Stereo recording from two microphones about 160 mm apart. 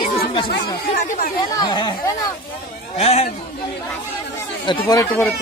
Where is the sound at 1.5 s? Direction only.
25° left (ahead or behind).